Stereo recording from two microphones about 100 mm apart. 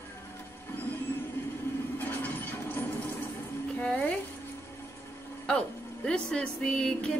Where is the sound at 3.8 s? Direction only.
10° left (ahead or behind).